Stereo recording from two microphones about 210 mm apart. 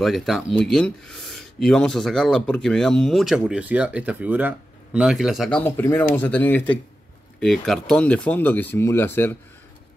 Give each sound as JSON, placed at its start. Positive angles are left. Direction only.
{"t": 0.0, "sound": "speech", "side_deg": 0}